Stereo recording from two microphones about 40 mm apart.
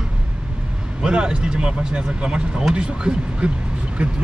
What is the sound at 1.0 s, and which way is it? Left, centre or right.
Speech, right.